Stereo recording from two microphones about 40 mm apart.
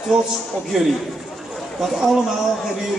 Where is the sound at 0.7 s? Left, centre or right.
Centre.